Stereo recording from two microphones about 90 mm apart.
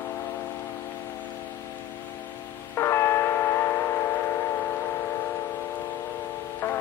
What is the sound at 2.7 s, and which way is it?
Music, 30° left (ahead or behind).